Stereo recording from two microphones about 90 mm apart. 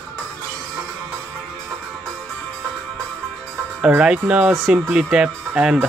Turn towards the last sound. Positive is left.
turn(degrees=-10)  # may be behind; listen again after turning